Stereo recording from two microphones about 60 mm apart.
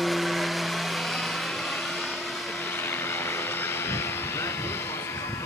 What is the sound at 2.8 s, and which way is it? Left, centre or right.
Vehicle, left.